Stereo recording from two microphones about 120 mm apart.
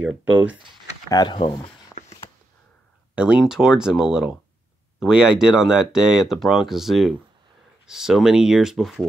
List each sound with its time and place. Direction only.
0.0 s speech: 10° right (ahead or behind)
1.1 s speech: 40° left (ahead or behind)
3.2 s speech: 5° right (ahead or behind)